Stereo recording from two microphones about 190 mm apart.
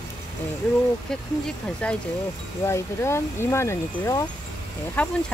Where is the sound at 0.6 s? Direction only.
5° left (ahead or behind).